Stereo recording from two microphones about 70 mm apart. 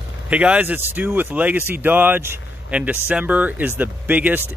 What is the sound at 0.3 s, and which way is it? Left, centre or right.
Speech, centre.